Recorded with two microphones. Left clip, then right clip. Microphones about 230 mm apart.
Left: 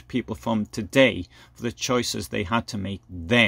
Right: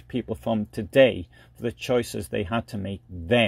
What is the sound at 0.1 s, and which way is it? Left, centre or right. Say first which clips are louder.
Speech: even; centre.